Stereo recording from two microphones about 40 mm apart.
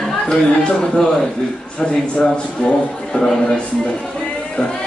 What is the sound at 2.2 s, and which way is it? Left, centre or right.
A man's voice, centre.